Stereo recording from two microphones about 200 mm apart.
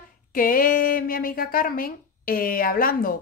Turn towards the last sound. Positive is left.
turn(degrees=45)  # may be behind; listen again after turning